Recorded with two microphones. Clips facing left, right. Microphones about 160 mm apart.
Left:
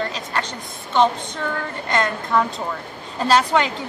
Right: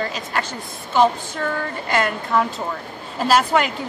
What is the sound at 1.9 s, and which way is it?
A woman's voice, 5° right (ahead or behind).